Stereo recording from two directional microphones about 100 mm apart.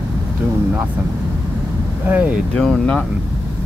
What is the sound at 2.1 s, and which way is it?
Speech, 15° right (ahead or behind).